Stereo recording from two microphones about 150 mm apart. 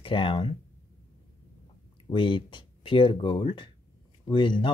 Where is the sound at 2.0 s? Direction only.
35° left (ahead or behind).